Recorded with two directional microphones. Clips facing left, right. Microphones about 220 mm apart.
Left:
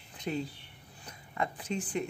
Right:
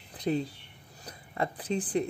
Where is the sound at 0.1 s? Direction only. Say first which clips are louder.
Right 6 dB; 35° right (ahead or behind).